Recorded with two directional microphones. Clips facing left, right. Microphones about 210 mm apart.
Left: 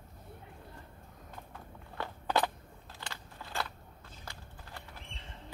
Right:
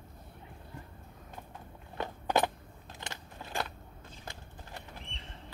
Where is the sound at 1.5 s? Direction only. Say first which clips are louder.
Right 3 dB; 20° right (ahead or behind).